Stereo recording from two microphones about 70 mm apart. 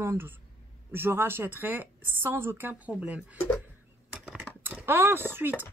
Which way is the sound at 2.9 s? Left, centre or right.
Centre.